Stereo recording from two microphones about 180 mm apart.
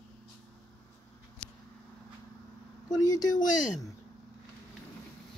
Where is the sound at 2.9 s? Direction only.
20° left (ahead or behind).